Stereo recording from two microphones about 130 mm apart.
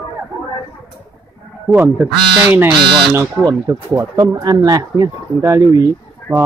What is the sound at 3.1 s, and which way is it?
Speech, 25° right (ahead or behind).